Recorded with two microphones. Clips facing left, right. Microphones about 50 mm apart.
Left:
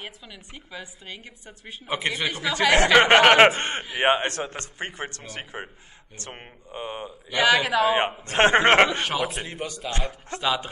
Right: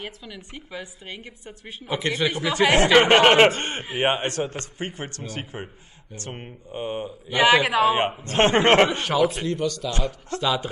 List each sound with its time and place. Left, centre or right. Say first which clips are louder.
0.7 s a woman's voice: right 2 dB; right
1.9 s a man's voice: right 2 dB; left
2.2 s a woman's voice: right 2 dB; right
3.1 s a man's voice: even; left
7.2 s a woman's voice: right 2 dB; right
8.3 s a man's voice: even; left